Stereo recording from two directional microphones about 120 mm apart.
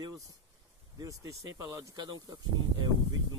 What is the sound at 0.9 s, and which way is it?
Speech, 30° right (ahead or behind).